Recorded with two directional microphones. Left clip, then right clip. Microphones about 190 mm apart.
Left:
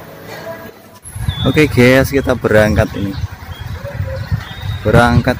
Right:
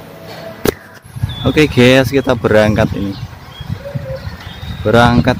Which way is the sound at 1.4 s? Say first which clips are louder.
Right 1 dB; 5° right (ahead or behind).